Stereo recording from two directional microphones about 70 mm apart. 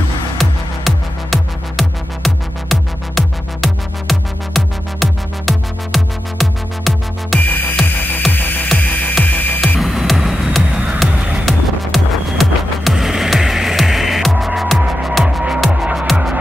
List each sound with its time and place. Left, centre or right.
0.4 s music: centre
7.3 s music: left
9.8 s music: centre
15.7 s music: centre